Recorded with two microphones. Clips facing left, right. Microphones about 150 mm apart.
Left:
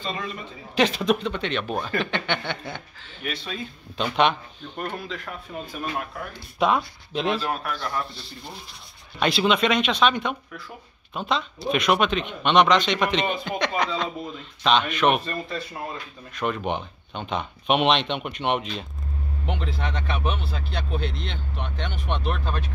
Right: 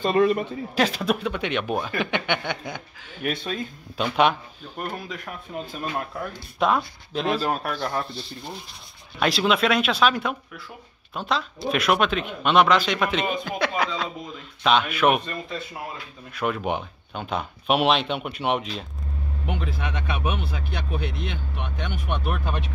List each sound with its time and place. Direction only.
0.0 s a man's voice: 55° right (ahead or behind)
0.7 s speech: 5° right (ahead or behind)
3.2 s speech: 55° right (ahead or behind)
3.9 s speech: 5° right (ahead or behind)
6.6 s speech: centre (ahead or behind)
7.4 s speech: 35° right (ahead or behind)
9.2 s speech: centre (ahead or behind)